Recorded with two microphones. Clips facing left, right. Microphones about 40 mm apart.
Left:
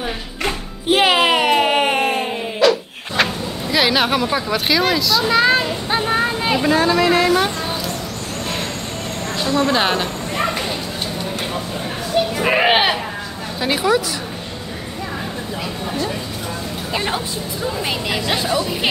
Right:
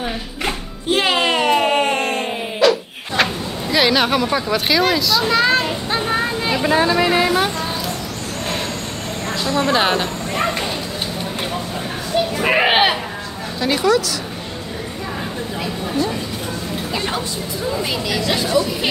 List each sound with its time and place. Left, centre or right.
0.9 s a sound: centre
3.7 s speech: centre
6.6 s speech: centre
9.5 s a woman's voice: centre
12.4 s speech: centre
13.6 s speech: centre
16.9 s speech: centre